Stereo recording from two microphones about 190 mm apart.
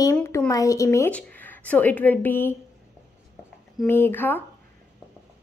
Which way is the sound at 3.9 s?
10° left (ahead or behind).